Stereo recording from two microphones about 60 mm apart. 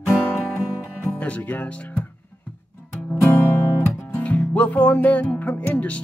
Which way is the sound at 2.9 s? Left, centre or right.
Left.